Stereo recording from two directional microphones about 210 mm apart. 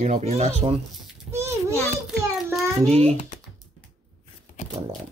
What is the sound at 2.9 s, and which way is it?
Speech, 30° right (ahead or behind).